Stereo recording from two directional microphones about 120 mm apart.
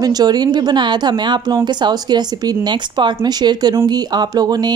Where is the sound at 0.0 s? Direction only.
35° right (ahead or behind).